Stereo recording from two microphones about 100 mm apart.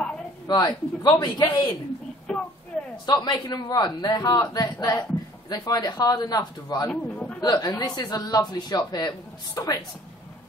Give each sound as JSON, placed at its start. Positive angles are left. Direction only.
{"t": 0.5, "sound": "a man's voice", "side_deg": 45}
{"t": 2.3, "sound": "a sound", "side_deg": 5}
{"t": 3.1, "sound": "a man's voice", "side_deg": 45}
{"t": 6.9, "sound": "a man's voice", "side_deg": 10}
{"t": 7.3, "sound": "a man's voice", "side_deg": 45}